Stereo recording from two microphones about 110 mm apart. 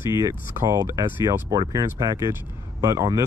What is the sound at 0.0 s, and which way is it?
Speech, 30° right (ahead or behind).